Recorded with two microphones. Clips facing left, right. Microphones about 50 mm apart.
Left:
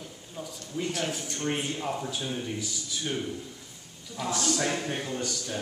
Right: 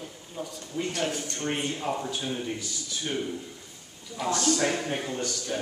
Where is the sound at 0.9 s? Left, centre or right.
Centre.